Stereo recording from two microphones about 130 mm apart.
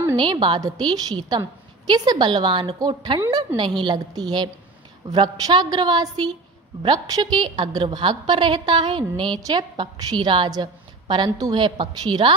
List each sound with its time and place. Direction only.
0.1 s a woman's voice: 40° right (ahead or behind)